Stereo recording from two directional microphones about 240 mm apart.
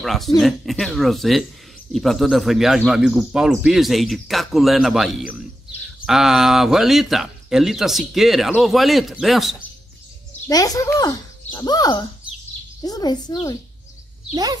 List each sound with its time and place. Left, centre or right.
0.0 s speech: centre
10.5 s speech: centre
14.3 s speech: centre